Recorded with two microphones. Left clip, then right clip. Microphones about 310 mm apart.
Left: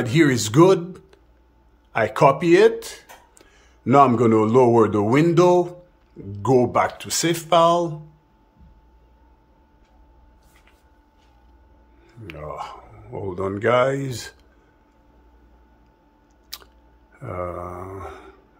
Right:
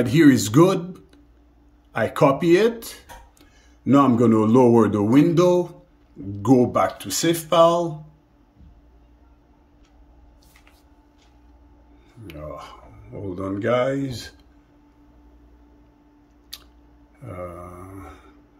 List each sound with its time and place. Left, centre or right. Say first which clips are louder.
0.0 s speech: right 2 dB; centre
12.3 s mantra: left 4 dB; centre
16.5 s chewing: left 2 dB; centre
17.2 s mantra: left 6 dB; centre